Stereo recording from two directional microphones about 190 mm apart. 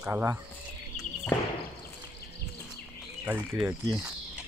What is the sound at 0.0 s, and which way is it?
Speech, 10° right (ahead or behind).